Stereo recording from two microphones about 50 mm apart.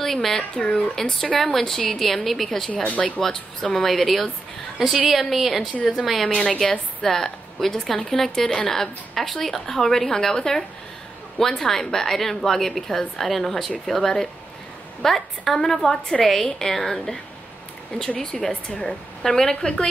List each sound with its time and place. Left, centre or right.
0.0 s speech: centre
0.4 s a woman's voice: centre
2.7 s speech: left
3.7 s a woman's voice: centre
4.7 s a woman's voice: centre
6.5 s a woman's voice: centre
18.2 s speech: centre
19.2 s a woman's voice: centre